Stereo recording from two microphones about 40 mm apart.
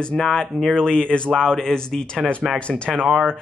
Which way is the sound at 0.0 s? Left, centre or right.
Centre.